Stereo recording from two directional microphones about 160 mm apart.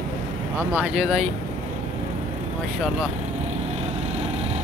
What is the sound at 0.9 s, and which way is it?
Speech, centre (ahead or behind).